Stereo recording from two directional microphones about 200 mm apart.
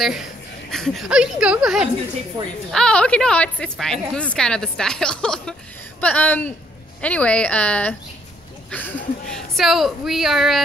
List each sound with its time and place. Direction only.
0.0 s a woman's voice: centre (ahead or behind)
2.4 s a woman's voice: 20° right (ahead or behind)
2.7 s a woman's voice: 5° left (ahead or behind)